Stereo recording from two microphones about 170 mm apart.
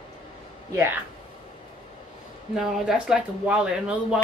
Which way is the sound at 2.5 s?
5° right (ahead or behind).